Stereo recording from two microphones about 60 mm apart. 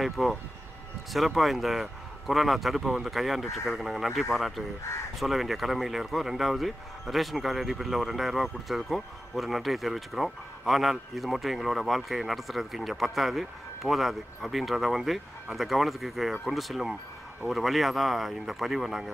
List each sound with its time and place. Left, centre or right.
0.0 s speech: centre